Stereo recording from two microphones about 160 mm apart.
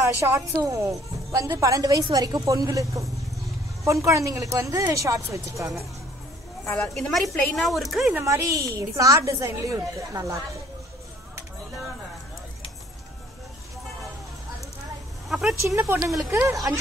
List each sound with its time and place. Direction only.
0.0 s speech: 20° right (ahead or behind)
6.6 s speech: 5° left (ahead or behind)
8.2 s speech: 20° right (ahead or behind)
15.2 s speech: centre (ahead or behind)
15.6 s speech: 15° right (ahead or behind)